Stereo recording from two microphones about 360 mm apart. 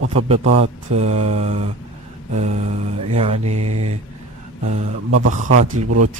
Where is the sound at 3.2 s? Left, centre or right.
Centre.